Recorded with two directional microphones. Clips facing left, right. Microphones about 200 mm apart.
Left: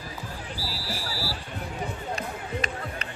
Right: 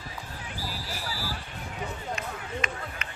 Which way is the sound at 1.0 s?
40° left (ahead or behind).